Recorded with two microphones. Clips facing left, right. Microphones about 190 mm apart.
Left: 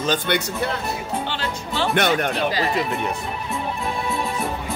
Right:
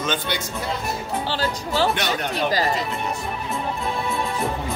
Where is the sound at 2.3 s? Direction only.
40° right (ahead or behind).